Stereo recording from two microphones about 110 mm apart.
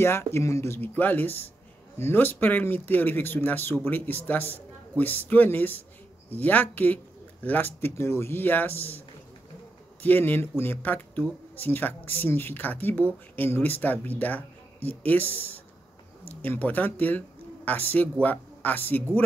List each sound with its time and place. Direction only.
0.0 s speech: 20° left (ahead or behind)
10.0 s speech: 15° left (ahead or behind)